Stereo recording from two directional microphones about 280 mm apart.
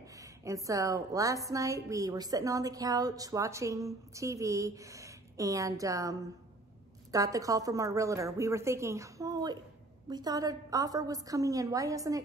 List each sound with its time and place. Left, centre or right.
0.5 s a woman's voice: centre